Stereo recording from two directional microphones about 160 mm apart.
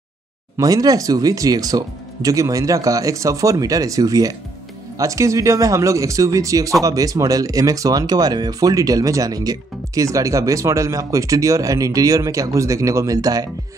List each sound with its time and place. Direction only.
0.6 s speech: 25° right (ahead or behind)